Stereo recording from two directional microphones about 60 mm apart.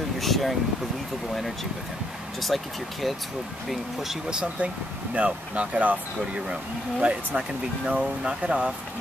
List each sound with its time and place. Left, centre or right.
0.2 s air conditioning: centre
1.3 s speech: centre